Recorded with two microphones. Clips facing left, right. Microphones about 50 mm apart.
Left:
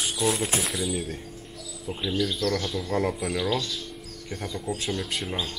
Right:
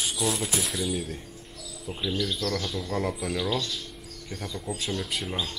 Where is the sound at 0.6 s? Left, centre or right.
Centre.